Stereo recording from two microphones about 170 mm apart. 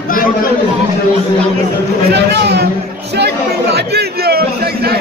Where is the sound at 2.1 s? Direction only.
75° right (ahead or behind).